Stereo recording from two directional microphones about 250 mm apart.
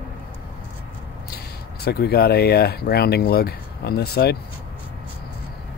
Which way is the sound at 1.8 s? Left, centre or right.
Left.